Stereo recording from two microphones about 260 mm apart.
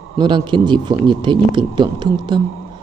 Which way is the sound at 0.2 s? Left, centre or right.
Centre.